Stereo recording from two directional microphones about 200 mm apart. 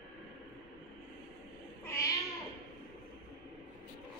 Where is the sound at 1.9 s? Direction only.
15° left (ahead or behind).